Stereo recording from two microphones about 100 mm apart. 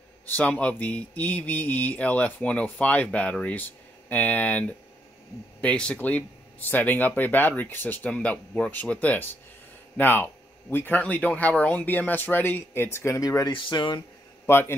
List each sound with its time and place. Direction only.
0.3 s speech: 15° left (ahead or behind); by 13.5 s 35° left (ahead or behind)
13.5 s speech: 50° left (ahead or behind)
14.4 s a man's voice: 25° left (ahead or behind)